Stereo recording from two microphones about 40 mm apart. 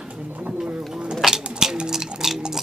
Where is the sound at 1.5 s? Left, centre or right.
Centre.